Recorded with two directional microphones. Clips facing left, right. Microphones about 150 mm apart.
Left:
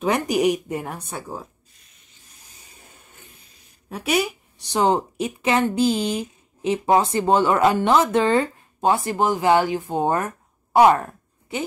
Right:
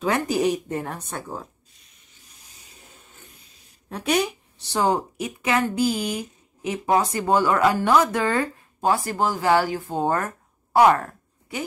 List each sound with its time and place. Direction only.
0.0 s speech: 15° left (ahead or behind)
3.9 s speech: 5° left (ahead or behind)
4.7 s speech: 25° left (ahead or behind)